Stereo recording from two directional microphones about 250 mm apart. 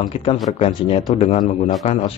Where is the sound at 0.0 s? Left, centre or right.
Left.